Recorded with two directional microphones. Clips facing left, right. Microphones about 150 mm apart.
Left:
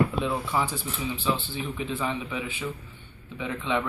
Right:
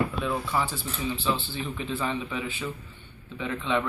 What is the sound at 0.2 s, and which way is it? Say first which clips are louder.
Speech: left 1 dB; 15° left (ahead or behind).